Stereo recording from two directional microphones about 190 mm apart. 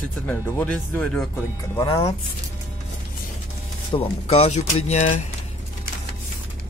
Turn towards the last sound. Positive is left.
turn(degrees=40)  # may be behind; listen again after turning